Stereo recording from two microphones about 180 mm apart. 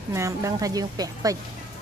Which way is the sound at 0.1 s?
15° right (ahead or behind).